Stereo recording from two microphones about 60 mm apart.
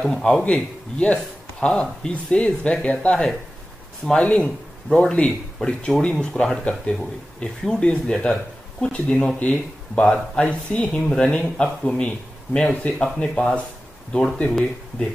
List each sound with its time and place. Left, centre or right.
0.0 s speech: centre
0.5 s speech: centre